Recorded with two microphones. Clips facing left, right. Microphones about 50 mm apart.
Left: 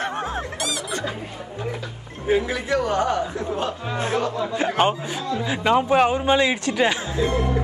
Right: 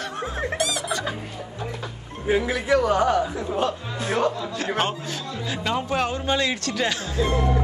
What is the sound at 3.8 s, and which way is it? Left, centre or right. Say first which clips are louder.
Speech: left 3 dB; left.